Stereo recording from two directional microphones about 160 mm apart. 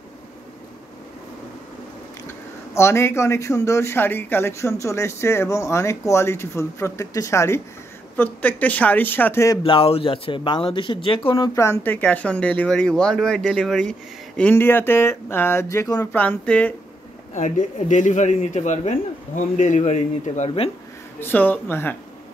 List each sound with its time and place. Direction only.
2.2 s speech: 15° left (ahead or behind)
9.6 s speech: 35° left (ahead or behind); by 16.7 s 10° left (ahead or behind)
17.3 s speech: 50° left (ahead or behind)
21.2 s speech: 10° left (ahead or behind)